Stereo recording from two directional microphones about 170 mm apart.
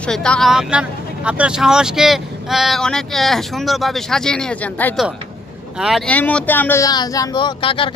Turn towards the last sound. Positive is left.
turn(degrees=30)  # may be behind; listen again after turning